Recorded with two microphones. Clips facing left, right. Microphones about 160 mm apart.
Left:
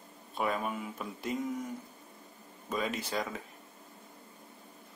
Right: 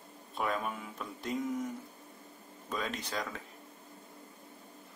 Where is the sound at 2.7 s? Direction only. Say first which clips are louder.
Left 3 dB; 5° left (ahead or behind).